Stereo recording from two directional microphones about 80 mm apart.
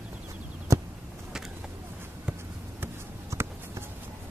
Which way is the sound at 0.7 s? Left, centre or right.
Right.